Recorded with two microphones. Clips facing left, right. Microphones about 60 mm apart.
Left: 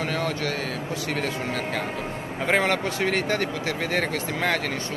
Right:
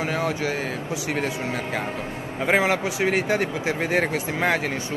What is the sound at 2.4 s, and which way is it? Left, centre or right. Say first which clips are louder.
Speech: right 2 dB; centre.